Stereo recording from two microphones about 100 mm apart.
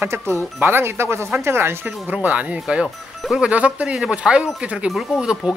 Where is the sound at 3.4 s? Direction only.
15° right (ahead or behind).